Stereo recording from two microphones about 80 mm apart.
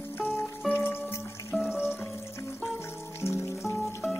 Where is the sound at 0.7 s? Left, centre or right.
Left.